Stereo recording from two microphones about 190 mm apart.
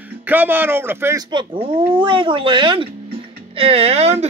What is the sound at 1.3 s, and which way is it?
Speech, 25° right (ahead or behind).